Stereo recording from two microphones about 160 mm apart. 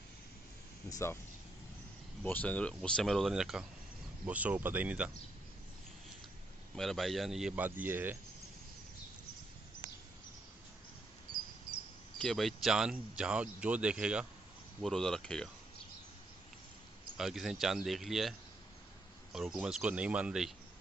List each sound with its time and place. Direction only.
0.8 s speech: 20° left (ahead or behind)
2.2 s speech: 10° left (ahead or behind); by 5.1 s 10° right (ahead or behind)
6.7 s speech: centre (ahead or behind)
12.2 s speech: centre (ahead or behind)
17.2 s speech: centre (ahead or behind)
19.3 s speech: 5° right (ahead or behind)